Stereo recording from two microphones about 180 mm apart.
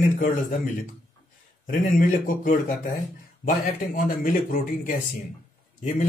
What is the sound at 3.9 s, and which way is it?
A man's voice, 50° left (ahead or behind).